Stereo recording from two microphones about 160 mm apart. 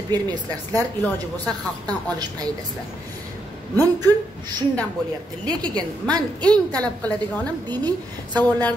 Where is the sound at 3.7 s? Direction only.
25° right (ahead or behind).